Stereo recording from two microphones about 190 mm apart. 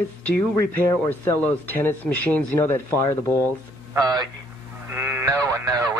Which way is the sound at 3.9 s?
20° right (ahead or behind).